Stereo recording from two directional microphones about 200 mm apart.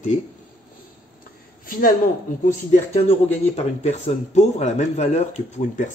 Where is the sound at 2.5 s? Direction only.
35° left (ahead or behind).